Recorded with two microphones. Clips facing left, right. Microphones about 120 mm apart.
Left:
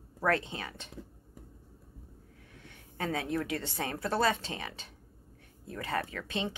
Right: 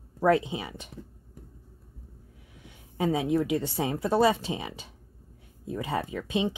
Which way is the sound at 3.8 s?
20° right (ahead or behind).